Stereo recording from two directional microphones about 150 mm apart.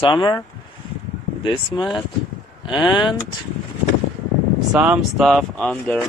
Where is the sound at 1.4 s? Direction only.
35° left (ahead or behind).